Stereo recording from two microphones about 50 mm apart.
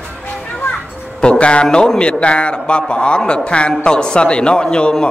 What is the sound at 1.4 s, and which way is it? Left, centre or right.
A man's voice, left.